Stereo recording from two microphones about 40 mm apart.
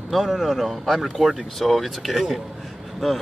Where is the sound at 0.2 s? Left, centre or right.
Centre.